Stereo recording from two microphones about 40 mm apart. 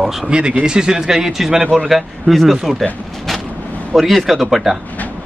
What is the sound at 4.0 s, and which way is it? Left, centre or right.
Speech, centre.